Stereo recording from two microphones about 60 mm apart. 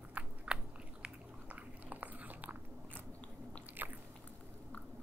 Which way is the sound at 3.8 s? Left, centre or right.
Right.